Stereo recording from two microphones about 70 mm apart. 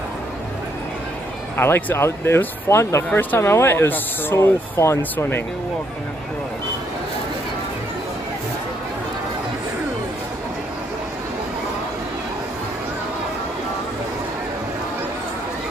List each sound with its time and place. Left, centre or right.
1.6 s speech: left
3.1 s speech: left
3.3 s speech: left